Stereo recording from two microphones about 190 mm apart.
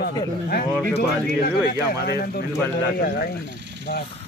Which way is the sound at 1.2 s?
55° left (ahead or behind).